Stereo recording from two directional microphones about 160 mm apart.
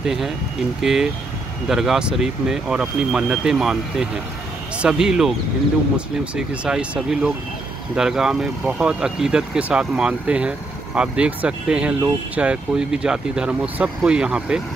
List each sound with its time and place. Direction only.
0.0 s speech: centre (ahead or behind)